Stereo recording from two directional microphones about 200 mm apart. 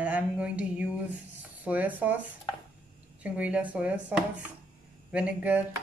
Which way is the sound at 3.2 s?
5° right (ahead or behind).